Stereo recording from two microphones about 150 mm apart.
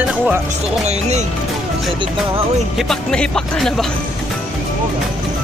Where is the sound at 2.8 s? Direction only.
5° left (ahead or behind).